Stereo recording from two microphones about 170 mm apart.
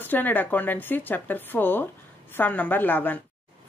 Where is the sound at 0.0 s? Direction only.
10° left (ahead or behind).